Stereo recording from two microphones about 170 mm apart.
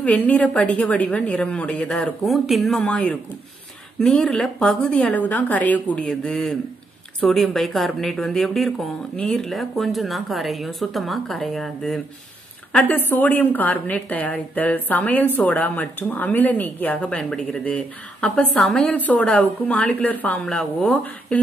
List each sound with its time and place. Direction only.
0.0 s a woman's voice: 10° left (ahead or behind)